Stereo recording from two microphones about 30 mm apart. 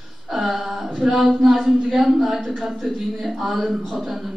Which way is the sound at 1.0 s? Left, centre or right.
Centre.